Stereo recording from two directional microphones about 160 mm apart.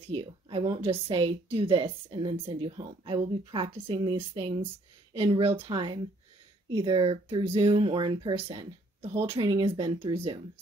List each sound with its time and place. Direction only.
0.1 s speech: 35° right (ahead or behind)